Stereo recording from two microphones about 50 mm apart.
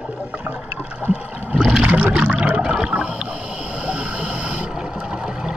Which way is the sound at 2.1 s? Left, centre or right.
Right.